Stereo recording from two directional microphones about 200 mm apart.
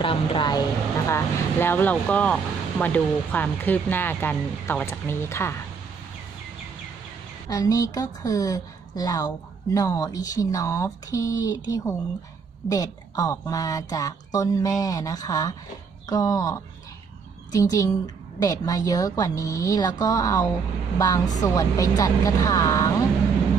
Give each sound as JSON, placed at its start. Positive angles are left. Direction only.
{"t": 0.0, "sound": "vehicle", "side_deg": 25}
{"t": 1.0, "sound": "speech", "side_deg": 15}
{"t": 7.4, "sound": "speech", "side_deg": 15}